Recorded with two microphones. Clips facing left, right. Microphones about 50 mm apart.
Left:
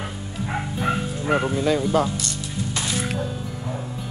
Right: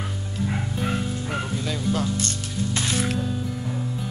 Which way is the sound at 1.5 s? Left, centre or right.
Centre.